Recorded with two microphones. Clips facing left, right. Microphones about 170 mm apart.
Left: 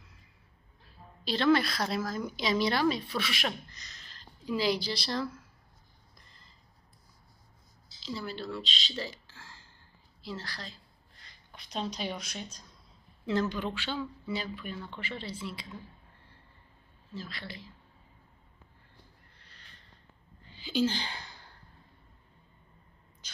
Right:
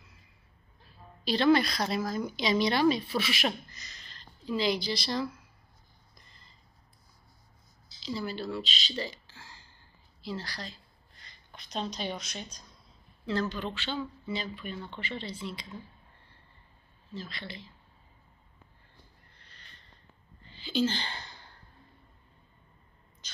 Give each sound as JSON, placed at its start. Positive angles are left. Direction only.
{"t": 1.2, "sound": "speech", "side_deg": 0}
{"t": 3.7, "sound": "a sound", "side_deg": 0}
{"t": 5.0, "sound": "speech", "side_deg": -5}
{"t": 8.0, "sound": "speech", "side_deg": 0}
{"t": 13.2, "sound": "a woman's voice", "side_deg": 20}
{"t": 17.1, "sound": "speech", "side_deg": 5}
{"t": 19.4, "sound": "a sound", "side_deg": 5}